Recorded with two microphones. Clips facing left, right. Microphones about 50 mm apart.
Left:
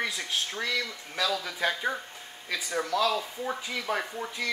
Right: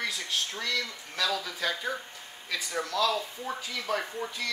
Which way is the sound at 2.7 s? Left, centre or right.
Centre.